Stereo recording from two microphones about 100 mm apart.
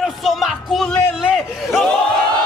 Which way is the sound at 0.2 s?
Centre (ahead or behind).